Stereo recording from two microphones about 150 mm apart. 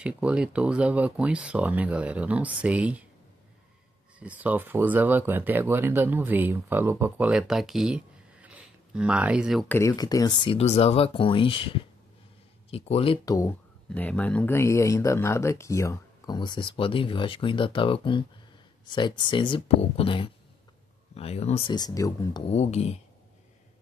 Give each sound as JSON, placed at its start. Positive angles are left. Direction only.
{"t": 0.0, "sound": "speech", "side_deg": -10}
{"t": 4.2, "sound": "speech", "side_deg": -10}
{"t": 9.7, "sound": "speech", "side_deg": 20}
{"t": 10.6, "sound": "speech", "side_deg": 45}
{"t": 13.2, "sound": "speech", "side_deg": 20}
{"t": 13.8, "sound": "speech", "side_deg": 10}
{"t": 16.3, "sound": "speech", "side_deg": 30}
{"t": 21.7, "sound": "speech", "side_deg": 25}
{"t": 22.5, "sound": "speech", "side_deg": 45}